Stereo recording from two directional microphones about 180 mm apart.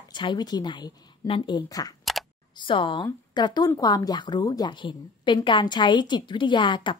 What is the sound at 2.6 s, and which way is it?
Speech, 25° left (ahead or behind).